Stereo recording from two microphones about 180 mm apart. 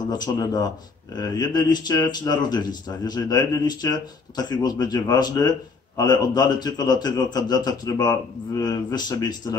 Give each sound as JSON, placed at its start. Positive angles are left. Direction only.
{"t": 0.1, "sound": "a man's voice", "side_deg": 20}